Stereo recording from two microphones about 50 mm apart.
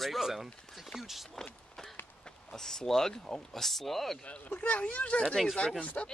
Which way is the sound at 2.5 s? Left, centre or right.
Centre.